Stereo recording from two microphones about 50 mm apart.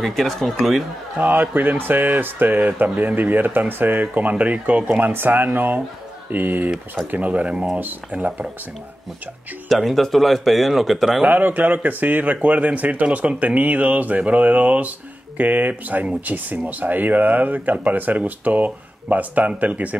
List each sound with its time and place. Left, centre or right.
0.0 s speech: centre
1.1 s speech: right
5.0 s speech: right
9.7 s speech: centre
11.2 s speech: right